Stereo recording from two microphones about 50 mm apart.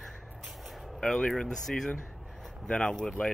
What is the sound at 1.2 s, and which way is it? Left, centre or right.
Speech, centre.